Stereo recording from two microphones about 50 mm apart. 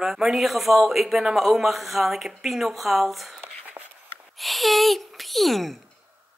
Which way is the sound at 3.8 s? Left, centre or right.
Right.